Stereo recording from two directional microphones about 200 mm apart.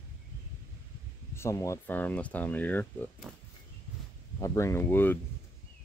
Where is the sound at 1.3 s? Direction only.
15° left (ahead or behind).